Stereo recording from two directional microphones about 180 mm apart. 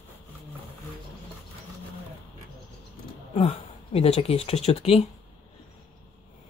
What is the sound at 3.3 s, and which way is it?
Speech, 30° left (ahead or behind).